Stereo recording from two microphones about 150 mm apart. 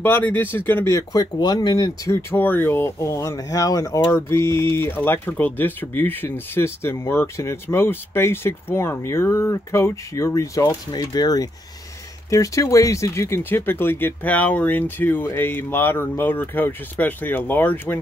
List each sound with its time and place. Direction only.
0.0 s speech: 10° left (ahead or behind); by 2.1 s 25° left (ahead or behind)
2.3 s speech: 15° left (ahead or behind)